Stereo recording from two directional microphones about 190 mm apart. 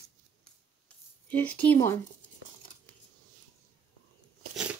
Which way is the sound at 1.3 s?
5° left (ahead or behind).